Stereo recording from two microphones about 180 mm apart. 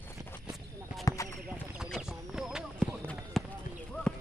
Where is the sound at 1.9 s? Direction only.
5° right (ahead or behind).